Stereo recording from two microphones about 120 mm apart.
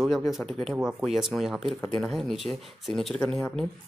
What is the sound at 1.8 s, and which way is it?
Speech, 10° left (ahead or behind).